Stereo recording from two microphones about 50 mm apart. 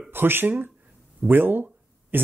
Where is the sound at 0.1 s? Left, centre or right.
Right.